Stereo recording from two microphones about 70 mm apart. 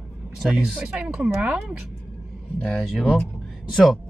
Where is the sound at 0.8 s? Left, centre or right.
Centre.